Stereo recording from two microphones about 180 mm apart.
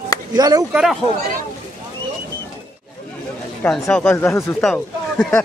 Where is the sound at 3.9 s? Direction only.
10° left (ahead or behind).